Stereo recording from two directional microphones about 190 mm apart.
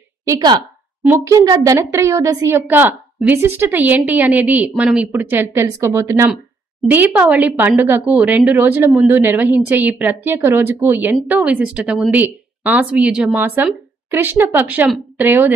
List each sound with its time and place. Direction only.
0.3 s a woman's voice: 20° right (ahead or behind)